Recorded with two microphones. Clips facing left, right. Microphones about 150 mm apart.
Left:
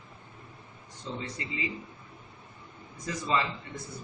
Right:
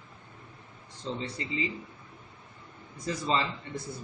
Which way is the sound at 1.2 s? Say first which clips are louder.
Right 3 dB; 30° right (ahead or behind).